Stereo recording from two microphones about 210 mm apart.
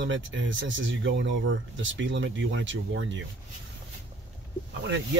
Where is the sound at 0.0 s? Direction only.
60° right (ahead or behind).